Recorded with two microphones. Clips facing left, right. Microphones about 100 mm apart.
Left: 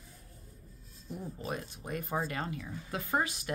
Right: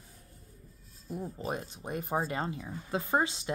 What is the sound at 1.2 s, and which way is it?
Speech, 25° right (ahead or behind).